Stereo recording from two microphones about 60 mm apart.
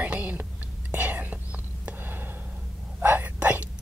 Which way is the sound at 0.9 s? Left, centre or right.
Right.